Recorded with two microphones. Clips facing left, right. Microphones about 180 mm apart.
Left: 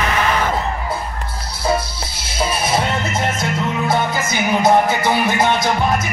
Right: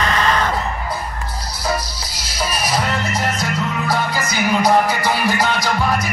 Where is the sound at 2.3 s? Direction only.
25° left (ahead or behind).